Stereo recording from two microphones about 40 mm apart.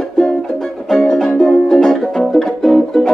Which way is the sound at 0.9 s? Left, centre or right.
Centre.